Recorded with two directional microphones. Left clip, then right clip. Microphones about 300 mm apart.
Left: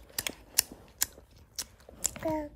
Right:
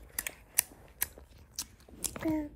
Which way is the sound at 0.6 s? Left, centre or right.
Left.